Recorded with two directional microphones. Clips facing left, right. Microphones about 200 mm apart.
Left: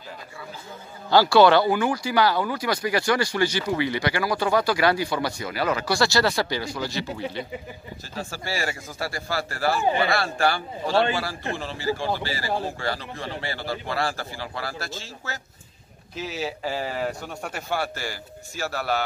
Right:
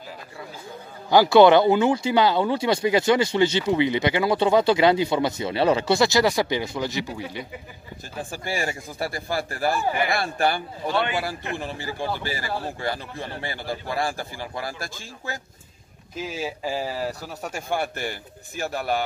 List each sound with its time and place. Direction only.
1.1 s a man's voice: 20° right (ahead or behind)
10.9 s a man's voice: 30° left (ahead or behind)
11.5 s a man's voice: 15° right (ahead or behind)
16.2 s a man's voice: 10° right (ahead or behind)